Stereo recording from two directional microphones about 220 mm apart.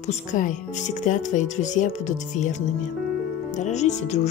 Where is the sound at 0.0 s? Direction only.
35° left (ahead or behind).